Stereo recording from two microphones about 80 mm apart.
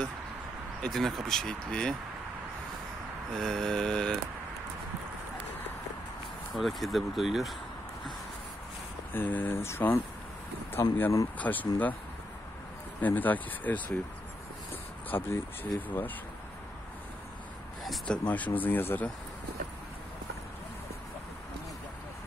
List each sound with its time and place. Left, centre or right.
0.8 s speech: centre
3.3 s speech: centre
6.5 s speech: centre
9.1 s speech: left
11.3 s speech: centre
13.0 s speech: left
15.0 s speech: left
17.8 s speech: centre